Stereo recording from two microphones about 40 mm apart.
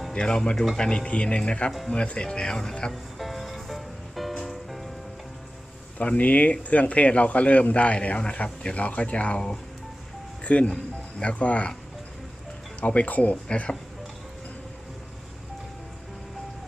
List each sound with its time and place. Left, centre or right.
0.1 s speech: centre
2.9 s music: centre
5.9 s a man's voice: left
12.8 s a man's voice: left
13.5 s speech: left